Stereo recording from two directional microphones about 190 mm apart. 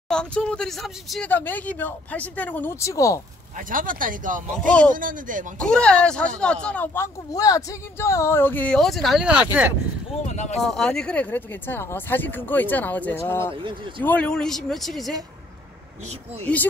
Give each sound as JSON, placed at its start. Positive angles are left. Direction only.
{"t": 0.1, "sound": "speech", "side_deg": 5}
{"t": 3.5, "sound": "speech", "side_deg": -45}
{"t": 4.6, "sound": "speech", "side_deg": 5}
{"t": 4.9, "sound": "speech", "side_deg": -45}
{"t": 5.6, "sound": "speech", "side_deg": 5}
{"t": 10.2, "sound": "speech", "side_deg": 35}
{"t": 10.6, "sound": "speech", "side_deg": 0}
{"t": 13.6, "sound": "speech", "side_deg": -25}
{"t": 14.0, "sound": "speech", "side_deg": 5}